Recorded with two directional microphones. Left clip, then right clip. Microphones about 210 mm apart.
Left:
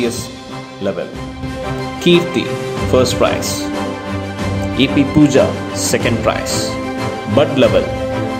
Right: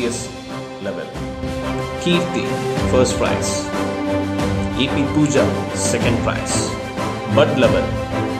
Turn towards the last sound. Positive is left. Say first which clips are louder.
# left 3 dB
turn(degrees=20)  # may be behind; listen again after turning